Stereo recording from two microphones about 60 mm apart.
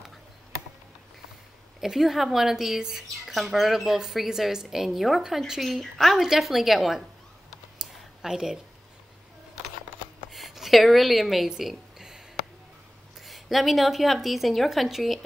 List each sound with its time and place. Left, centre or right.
1.8 s speech: centre
7.8 s clicking: centre
10.3 s a sound: centre
13.2 s speech: centre